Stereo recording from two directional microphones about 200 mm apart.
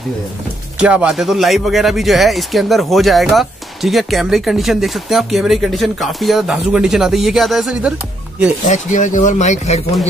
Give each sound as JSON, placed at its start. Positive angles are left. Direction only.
{"t": 0.7, "sound": "speech", "side_deg": -5}
{"t": 8.6, "sound": "speech", "side_deg": 35}